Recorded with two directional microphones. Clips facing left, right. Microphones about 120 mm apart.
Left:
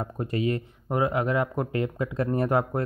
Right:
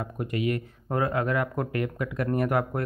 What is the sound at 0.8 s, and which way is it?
Speech, 20° left (ahead or behind).